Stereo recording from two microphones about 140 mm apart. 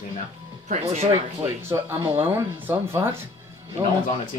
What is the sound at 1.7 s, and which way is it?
Speech, 15° right (ahead or behind).